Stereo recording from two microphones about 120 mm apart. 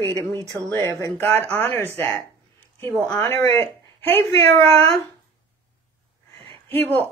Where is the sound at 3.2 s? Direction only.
20° left (ahead or behind).